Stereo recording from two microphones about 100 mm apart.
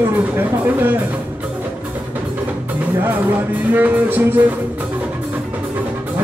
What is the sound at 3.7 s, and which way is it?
Music, 20° right (ahead or behind).